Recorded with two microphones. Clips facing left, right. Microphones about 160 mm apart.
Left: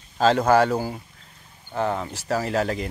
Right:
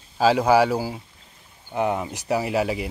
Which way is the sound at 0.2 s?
10° right (ahead or behind).